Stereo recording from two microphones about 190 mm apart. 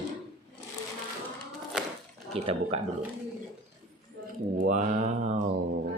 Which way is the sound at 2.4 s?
30° right (ahead or behind).